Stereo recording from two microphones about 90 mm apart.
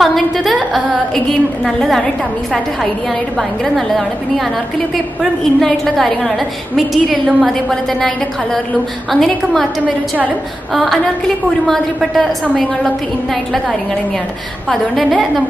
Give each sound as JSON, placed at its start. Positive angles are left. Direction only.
{"t": 0.0, "sound": "a woman's voice", "side_deg": 0}
{"t": 3.3, "sound": "a woman's voice", "side_deg": 0}
{"t": 5.2, "sound": "a woman's voice", "side_deg": 5}
{"t": 9.1, "sound": "a woman's voice", "side_deg": 5}
{"t": 10.7, "sound": "a woman's voice", "side_deg": 0}